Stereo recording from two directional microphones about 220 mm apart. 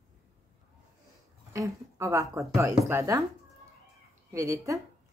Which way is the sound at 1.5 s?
15° right (ahead or behind).